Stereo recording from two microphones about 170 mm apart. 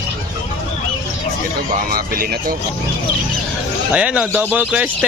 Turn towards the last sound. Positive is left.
turn(degrees=-10)  # may be behind; listen again after turning